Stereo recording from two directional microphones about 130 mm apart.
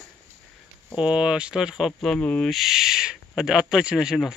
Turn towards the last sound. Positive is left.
turn(degrees=-5)  # may be behind; listen again after turning